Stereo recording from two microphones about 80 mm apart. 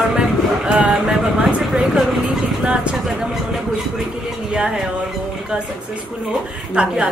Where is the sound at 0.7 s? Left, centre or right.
Centre.